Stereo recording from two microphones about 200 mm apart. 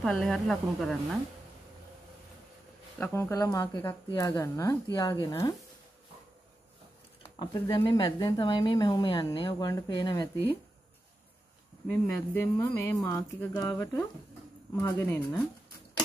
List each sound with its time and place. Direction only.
0.0 s speech: centre (ahead or behind)
3.0 s speech: 15° left (ahead or behind)
7.3 s speech: 25° left (ahead or behind)
11.9 s speech: 15° left (ahead or behind)